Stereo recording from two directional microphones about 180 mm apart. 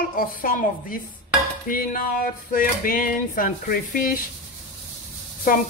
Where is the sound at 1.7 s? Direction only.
50° left (ahead or behind).